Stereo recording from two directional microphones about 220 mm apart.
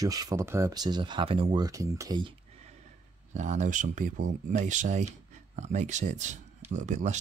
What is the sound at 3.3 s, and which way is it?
Speech, 35° right (ahead or behind).